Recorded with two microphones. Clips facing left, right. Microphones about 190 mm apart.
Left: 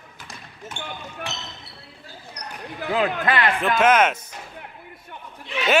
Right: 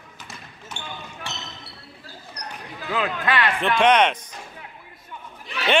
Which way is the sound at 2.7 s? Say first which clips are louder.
Left 4 dB; 55° left (ahead or behind).